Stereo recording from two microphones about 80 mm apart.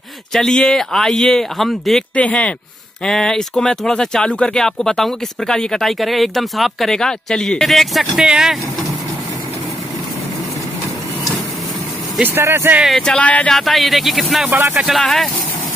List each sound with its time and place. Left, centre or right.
0.3 s speech: centre
2.1 s speech: centre
12.2 s speech: right
13.0 s speech: centre
13.5 s speech: centre
14.5 s speech: right
15.0 s speech: centre